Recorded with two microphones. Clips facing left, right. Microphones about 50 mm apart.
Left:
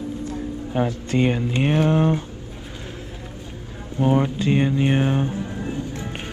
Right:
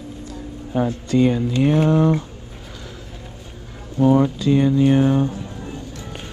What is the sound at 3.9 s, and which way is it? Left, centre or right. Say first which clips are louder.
Speech: right 4 dB; left.